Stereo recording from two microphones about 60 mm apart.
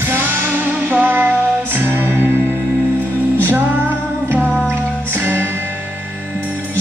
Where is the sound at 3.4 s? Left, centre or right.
Right.